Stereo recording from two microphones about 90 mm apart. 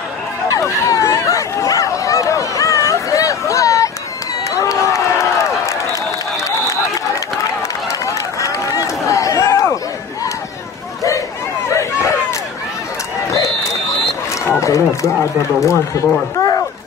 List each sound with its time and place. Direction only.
0.5 s chatter: 35° left (ahead or behind)
4.5 s a sound: 40° left (ahead or behind)
8.0 s run: 35° left (ahead or behind)
11.7 s a sound: 35° left (ahead or behind)
14.6 s run: 35° left (ahead or behind)
15.7 s speech: 40° left (ahead or behind)